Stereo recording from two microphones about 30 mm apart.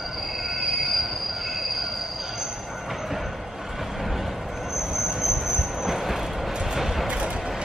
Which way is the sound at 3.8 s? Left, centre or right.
Centre.